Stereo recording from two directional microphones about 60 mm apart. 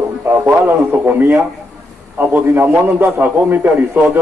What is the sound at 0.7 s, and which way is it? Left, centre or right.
A man's voice, right.